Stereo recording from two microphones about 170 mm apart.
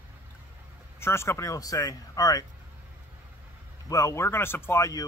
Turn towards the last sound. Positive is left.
turn(degrees=20)  # may be behind; listen again after turning